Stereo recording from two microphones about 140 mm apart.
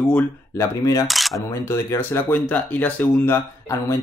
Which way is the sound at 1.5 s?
20° left (ahead or behind).